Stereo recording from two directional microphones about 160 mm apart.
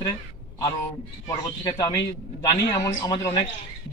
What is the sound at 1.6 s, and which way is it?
Speech, 25° left (ahead or behind).